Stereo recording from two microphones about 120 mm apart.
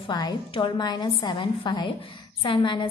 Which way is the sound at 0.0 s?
35° left (ahead or behind).